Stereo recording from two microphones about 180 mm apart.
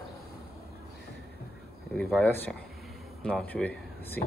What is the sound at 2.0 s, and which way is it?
Speech, 5° left (ahead or behind).